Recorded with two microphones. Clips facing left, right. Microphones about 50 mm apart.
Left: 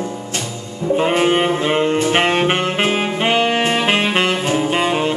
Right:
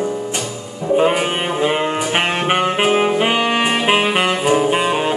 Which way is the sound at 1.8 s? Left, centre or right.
Centre.